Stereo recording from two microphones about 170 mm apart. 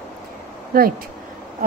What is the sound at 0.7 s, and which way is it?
Speech, 60° right (ahead or behind).